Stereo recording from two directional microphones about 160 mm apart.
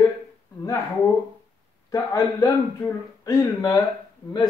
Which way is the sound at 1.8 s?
20° left (ahead or behind).